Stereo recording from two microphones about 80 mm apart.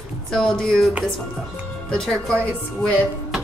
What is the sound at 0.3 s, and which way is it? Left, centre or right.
Speech, centre.